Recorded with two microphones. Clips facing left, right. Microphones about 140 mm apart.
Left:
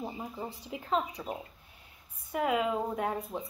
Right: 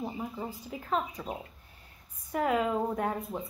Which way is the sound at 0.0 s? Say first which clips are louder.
Right 2 dB; 5° left (ahead or behind).